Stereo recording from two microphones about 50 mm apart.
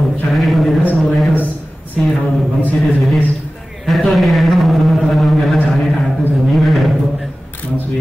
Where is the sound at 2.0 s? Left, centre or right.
Centre.